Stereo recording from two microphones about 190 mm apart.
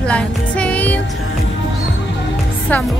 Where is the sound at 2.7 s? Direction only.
10° left (ahead or behind).